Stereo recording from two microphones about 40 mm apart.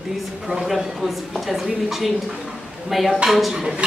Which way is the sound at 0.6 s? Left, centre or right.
Centre.